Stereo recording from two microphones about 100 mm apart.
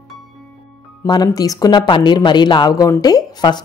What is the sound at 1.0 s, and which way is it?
A woman's voice, 40° left (ahead or behind).